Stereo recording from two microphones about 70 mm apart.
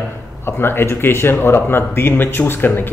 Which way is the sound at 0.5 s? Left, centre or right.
Left.